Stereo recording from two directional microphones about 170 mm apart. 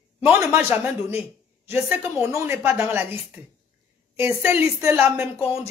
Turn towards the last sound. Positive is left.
turn(degrees=-10)  # may be behind; listen again after turning